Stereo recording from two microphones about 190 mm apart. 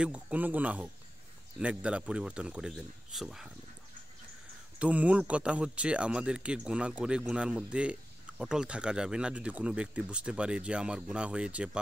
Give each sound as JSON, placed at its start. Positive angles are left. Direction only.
{"t": 0.0, "sound": "speech", "side_deg": -5}
{"t": 4.7, "sound": "speech", "side_deg": -5}